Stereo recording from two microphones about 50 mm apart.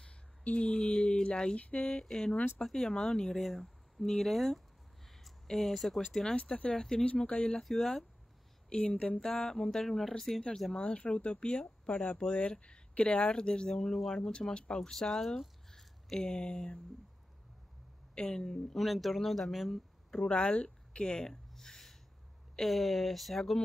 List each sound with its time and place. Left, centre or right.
0.0 s a sound: left
1.9 s speech: centre
6.3 s speech: left
6.8 s speech: centre
7.1 s speech: left
7.6 s speech: centre
8.6 s speech: left
9.2 s speech: centre; by 13.3 s left
13.3 s speech: centre
18.1 s speech: centre
20.2 s speech: left
21.3 s a sound: centre
22.6 s speech: centre